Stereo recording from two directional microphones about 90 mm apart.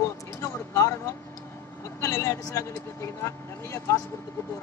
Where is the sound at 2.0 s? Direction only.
30° left (ahead or behind).